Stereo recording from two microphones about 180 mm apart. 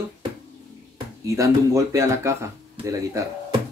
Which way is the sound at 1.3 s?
15° right (ahead or behind).